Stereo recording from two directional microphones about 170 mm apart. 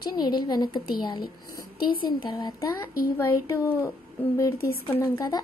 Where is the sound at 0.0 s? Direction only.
25° left (ahead or behind).